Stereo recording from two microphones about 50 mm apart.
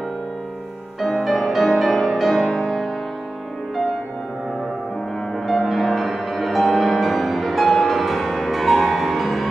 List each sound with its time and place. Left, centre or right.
1.0 s music: centre
5.7 s music: centre